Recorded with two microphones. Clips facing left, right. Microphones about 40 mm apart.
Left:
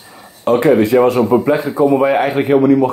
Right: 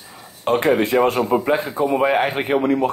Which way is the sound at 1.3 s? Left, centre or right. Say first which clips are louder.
Left 5 dB; centre.